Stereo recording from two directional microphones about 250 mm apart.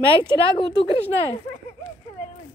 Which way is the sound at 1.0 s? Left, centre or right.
Centre.